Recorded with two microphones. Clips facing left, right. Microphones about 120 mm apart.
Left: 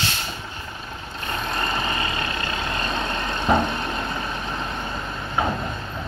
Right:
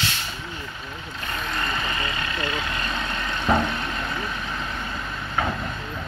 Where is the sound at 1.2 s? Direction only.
30° left (ahead or behind).